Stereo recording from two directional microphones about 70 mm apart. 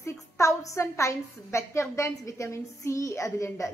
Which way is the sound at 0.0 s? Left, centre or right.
Left.